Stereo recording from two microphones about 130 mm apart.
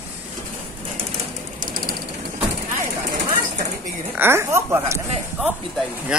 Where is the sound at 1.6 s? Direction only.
90° right.